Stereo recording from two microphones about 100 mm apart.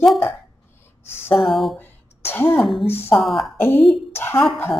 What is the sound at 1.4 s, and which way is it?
Speech, centre (ahead or behind).